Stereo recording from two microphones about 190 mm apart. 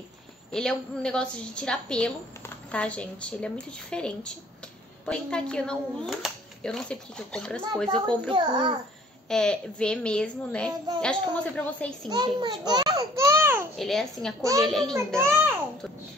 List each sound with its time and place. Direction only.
0.5 s a woman's voice: 5° left (ahead or behind)
8.3 s a child's voice: 25° right (ahead or behind)
9.3 s a woman's voice: 5° left (ahead or behind)
12.1 s a child's voice: 25° right (ahead or behind)
13.7 s a woman's voice: centre (ahead or behind)
15.1 s a child's voice: 10° right (ahead or behind)